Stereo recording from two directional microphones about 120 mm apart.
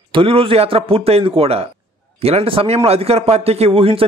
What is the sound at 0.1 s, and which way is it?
A man's voice, 50° right (ahead or behind).